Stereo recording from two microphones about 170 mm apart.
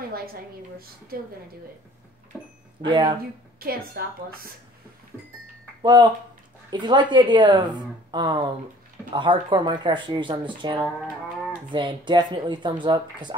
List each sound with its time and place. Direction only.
2.3 s speech: 5° right (ahead or behind)
2.8 s speech: 25° right (ahead or behind)
3.5 s a woman's voice: 60° right (ahead or behind)
5.8 s speech: 25° right (ahead or behind)